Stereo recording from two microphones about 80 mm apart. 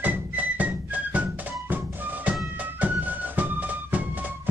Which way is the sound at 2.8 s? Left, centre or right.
Right.